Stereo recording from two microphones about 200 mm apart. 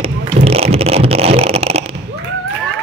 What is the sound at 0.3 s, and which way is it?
Vehicle, 30° right (ahead or behind).